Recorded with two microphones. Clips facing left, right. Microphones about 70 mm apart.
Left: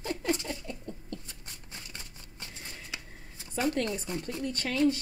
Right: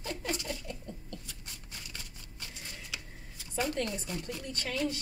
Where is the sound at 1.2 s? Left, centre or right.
Left.